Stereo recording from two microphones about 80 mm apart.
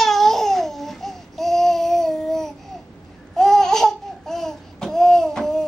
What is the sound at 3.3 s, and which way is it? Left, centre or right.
Babbling, centre.